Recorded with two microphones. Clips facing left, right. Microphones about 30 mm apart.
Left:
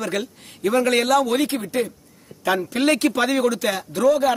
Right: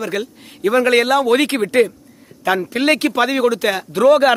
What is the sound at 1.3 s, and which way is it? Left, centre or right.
Speech, right.